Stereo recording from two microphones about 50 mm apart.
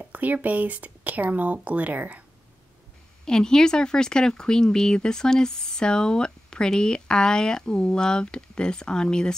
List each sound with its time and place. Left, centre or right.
0.1 s speech: right
3.3 s speech: centre